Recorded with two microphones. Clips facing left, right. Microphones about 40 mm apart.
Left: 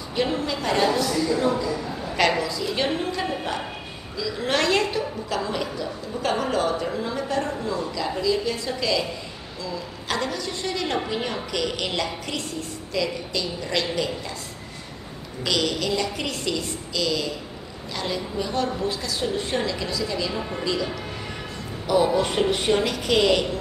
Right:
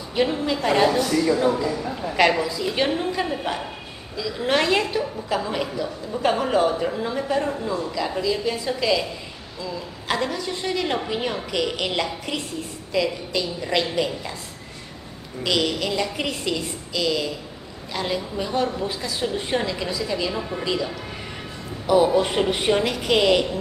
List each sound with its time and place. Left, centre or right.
0.3 s a woman's voice: centre
15.4 s a woman's voice: centre
20.3 s speech: centre
21.8 s a woman's voice: centre